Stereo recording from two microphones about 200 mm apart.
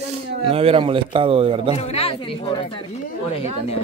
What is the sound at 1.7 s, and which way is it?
Speech, 30° left (ahead or behind).